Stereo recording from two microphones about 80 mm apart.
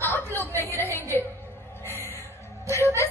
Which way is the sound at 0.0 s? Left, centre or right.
Left.